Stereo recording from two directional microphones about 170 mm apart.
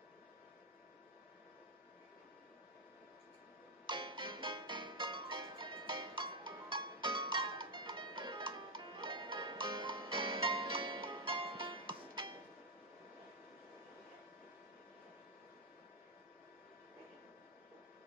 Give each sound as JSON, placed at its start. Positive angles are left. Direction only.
{"t": 3.8, "sound": "music", "side_deg": -25}